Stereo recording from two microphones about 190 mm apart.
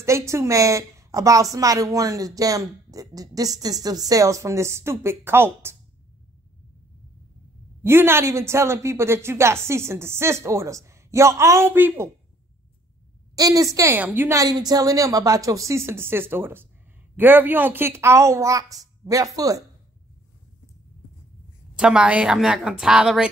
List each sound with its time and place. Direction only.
0.0 s a woman's voice: 15° right (ahead or behind)
7.8 s a woman's voice: 10° right (ahead or behind)
13.4 s a woman's voice: 20° right (ahead or behind)
21.7 s a woman's voice: 5° right (ahead or behind)